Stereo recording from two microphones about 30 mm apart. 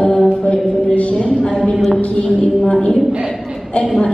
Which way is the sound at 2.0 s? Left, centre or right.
Left.